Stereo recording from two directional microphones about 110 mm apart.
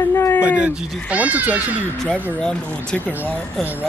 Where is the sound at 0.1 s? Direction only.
20° left (ahead or behind).